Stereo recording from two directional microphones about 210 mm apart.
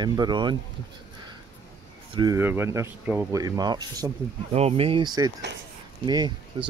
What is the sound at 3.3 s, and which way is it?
Speech, 20° right (ahead or behind).